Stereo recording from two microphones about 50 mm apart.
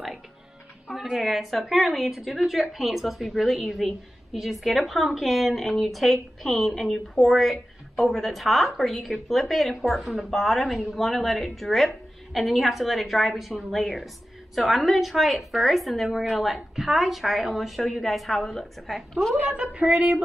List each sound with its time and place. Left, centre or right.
1.1 s a woman's voice: centre
19.4 s a woman's voice: right